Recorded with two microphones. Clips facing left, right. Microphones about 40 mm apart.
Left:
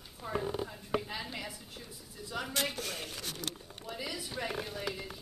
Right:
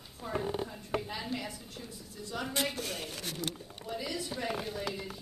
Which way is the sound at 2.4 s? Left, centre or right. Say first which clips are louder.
Right 1 dB; centre.